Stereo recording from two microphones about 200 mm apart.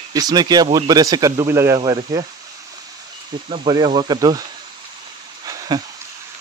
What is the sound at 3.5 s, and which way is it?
Speech, 25° right (ahead or behind).